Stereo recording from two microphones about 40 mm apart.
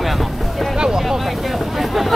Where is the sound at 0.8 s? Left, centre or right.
Centre.